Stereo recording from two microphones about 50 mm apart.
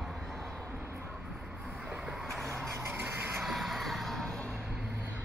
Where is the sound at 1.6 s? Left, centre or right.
Right.